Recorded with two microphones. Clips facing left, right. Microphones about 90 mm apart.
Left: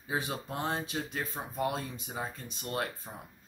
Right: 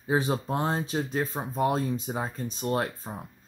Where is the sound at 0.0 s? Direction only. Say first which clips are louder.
Right 8 dB; 30° right (ahead or behind).